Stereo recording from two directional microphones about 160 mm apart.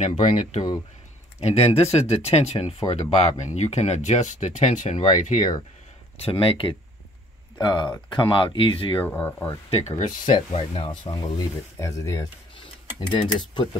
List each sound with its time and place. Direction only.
0.0 s speech: 50° left (ahead or behind)
6.2 s speech: 35° left (ahead or behind)
9.0 s speech: 10° left (ahead or behind)
9.7 s speech: 40° left (ahead or behind)